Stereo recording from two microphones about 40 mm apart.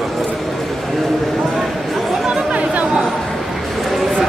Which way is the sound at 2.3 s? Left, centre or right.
Right.